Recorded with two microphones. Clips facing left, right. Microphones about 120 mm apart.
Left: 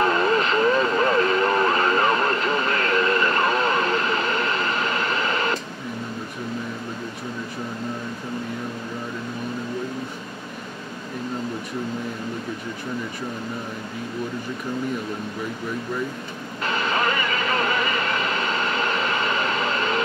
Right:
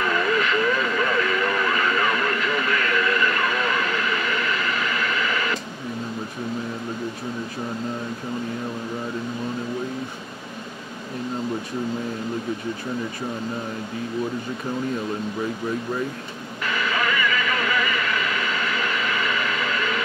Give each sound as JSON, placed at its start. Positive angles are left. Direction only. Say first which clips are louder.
{"t": 0.0, "sound": "vehicle", "louder": "left 3 dB", "side_deg": 35}
{"t": 16.6, "sound": "vehicle", "louder": "left 2 dB", "side_deg": 35}